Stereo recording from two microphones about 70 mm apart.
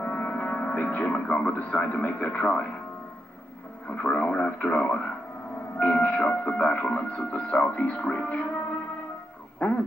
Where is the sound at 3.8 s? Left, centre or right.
Centre.